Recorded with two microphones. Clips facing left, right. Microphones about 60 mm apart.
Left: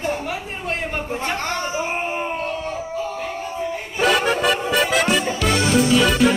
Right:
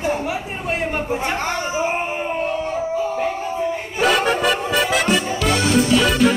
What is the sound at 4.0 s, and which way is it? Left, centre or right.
Music, centre.